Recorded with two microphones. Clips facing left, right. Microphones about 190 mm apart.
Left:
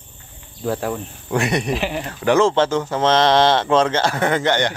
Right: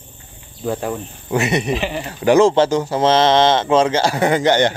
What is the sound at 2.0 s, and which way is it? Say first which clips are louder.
Speech: right 4 dB; 10° right (ahead or behind).